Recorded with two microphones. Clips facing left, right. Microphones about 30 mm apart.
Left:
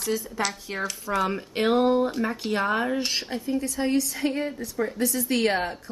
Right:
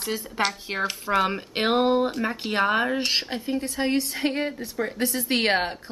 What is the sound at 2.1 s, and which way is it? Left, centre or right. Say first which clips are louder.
Speech: even; centre.